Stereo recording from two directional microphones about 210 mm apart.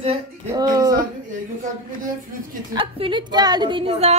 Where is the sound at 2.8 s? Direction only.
25° right (ahead or behind).